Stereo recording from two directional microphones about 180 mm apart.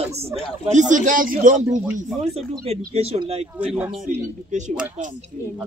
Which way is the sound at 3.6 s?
10° right (ahead or behind).